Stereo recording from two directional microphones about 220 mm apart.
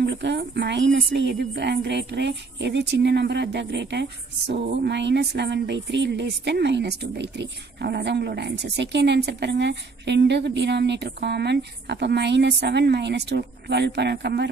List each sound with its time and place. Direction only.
0.0 s a woman's voice: 50° right (ahead or behind)